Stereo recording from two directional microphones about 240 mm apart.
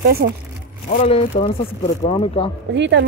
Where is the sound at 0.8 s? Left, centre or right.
Left.